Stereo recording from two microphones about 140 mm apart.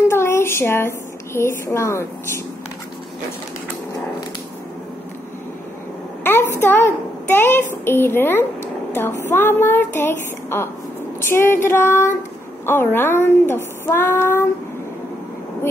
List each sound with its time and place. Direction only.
0.1 s a sound: 15° left (ahead or behind)
1.7 s a woman's voice: 20° left (ahead or behind)
6.5 s a woman's voice: 15° left (ahead or behind)